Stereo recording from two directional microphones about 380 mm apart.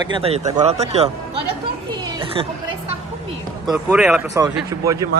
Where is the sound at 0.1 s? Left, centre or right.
Centre.